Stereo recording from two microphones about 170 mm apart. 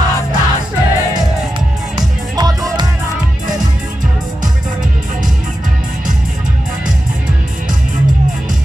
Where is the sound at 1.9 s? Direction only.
20° right (ahead or behind).